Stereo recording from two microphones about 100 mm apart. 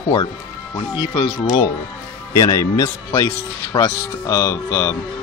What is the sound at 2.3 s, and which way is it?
Speech, 35° left (ahead or behind).